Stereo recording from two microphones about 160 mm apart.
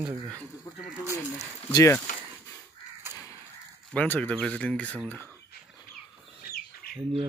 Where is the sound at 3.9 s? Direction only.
10° left (ahead or behind).